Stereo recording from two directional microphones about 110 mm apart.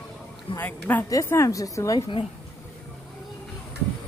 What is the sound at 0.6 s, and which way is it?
Speech, 15° left (ahead or behind).